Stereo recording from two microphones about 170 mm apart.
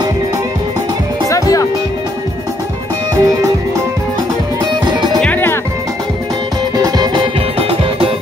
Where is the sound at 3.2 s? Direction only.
20° right (ahead or behind).